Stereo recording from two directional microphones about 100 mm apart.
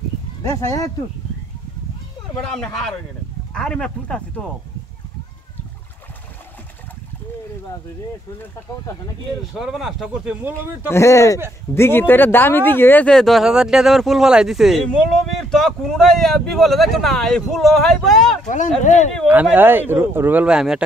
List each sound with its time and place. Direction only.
0.4 s speech: 35° left (ahead or behind)
2.4 s speech: 5° left (ahead or behind)
9.6 s speech: 5° right (ahead or behind)
10.9 s speech: 30° left (ahead or behind)
13.0 s speech: 5° left (ahead or behind)
19.2 s speech: 15° right (ahead or behind)